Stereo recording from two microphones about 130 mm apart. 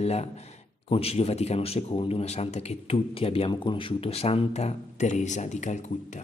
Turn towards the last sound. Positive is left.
turn(degrees=65)  # may be behind; listen again after turning